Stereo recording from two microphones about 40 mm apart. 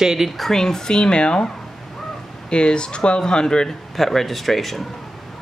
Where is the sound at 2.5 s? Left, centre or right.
Left.